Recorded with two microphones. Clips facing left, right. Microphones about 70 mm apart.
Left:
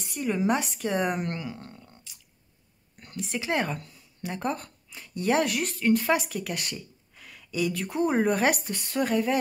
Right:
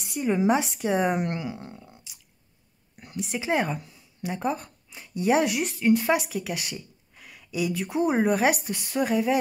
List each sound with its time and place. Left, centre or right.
0.1 s speech: centre
3.0 s a sound: centre
3.5 s speech: centre